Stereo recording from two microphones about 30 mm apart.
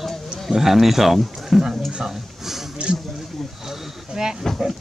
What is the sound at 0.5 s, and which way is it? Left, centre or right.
Speech, centre.